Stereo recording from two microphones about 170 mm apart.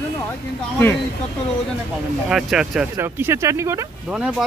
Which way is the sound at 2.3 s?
Centre (ahead or behind).